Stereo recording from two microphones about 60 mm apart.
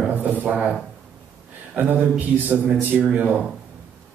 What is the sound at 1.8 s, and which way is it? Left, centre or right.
A man's voice, right.